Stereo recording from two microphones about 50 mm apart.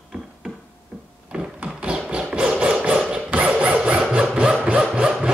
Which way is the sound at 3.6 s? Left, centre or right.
Right.